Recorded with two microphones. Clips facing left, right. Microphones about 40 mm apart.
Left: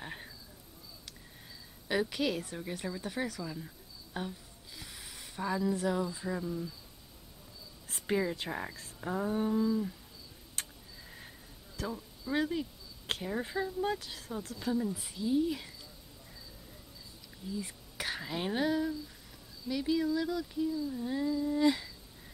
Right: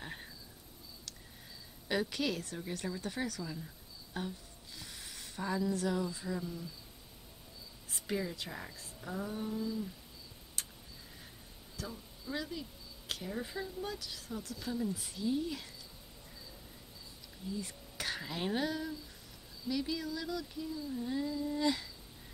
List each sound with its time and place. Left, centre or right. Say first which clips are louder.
0.0 s a sound: left 2 dB; centre
1.9 s speech: left 3 dB; centre
8.1 s speech: left 6 dB; left
10.6 s vehicle: left 3 dB; left
11.7 s speech: left 6 dB; left
14.6 s speech: left 5 dB; centre
17.6 s speech: left 2 dB; centre